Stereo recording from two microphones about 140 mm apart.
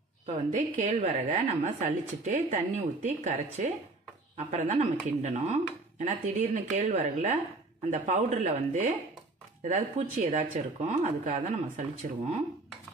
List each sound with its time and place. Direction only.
0.3 s speech: 65° right (ahead or behind)
1.1 s speech: 55° right (ahead or behind)